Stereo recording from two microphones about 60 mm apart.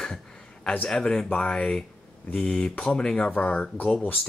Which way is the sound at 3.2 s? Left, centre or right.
Left.